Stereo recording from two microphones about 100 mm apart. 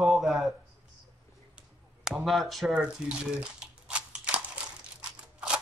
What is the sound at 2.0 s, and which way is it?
Speech, centre (ahead or behind).